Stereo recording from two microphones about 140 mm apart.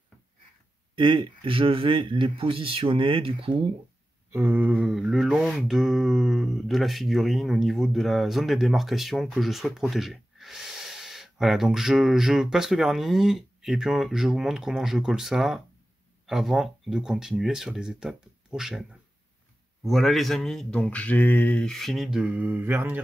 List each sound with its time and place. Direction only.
0.9 s speech: 35° right (ahead or behind)
4.3 s mantra: 15° right (ahead or behind)